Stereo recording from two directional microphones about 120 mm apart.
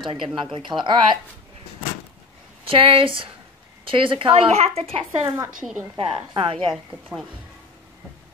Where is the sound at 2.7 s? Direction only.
50° right (ahead or behind).